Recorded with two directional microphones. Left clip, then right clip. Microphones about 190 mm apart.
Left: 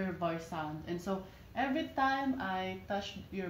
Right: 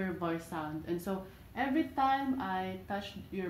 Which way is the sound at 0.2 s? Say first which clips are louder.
Even; 15° left (ahead or behind).